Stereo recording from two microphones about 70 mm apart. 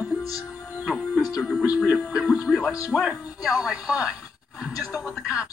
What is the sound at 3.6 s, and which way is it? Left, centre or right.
Speech, centre.